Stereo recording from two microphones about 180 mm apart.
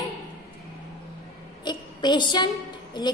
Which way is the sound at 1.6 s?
25° left (ahead or behind).